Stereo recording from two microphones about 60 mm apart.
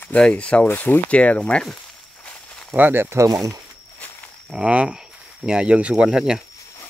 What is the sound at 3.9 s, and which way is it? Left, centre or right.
Wild animals, left.